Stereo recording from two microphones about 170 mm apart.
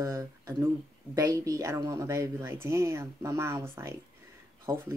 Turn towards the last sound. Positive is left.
turn(degrees=-15)  # may be behind; listen again after turning